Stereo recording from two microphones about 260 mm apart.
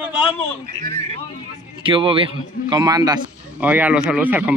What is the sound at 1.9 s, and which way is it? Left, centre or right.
Speech, centre.